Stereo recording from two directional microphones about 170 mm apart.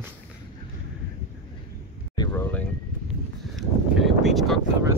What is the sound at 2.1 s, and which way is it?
Speech, 20° left (ahead or behind).